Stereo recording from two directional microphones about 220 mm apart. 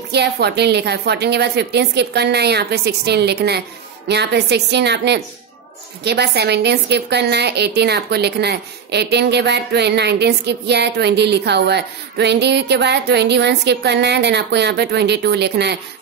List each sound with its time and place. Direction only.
0.1 s a woman's voice: 50° right (ahead or behind)